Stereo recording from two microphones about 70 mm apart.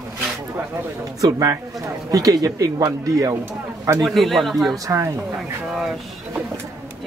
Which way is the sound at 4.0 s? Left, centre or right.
Centre.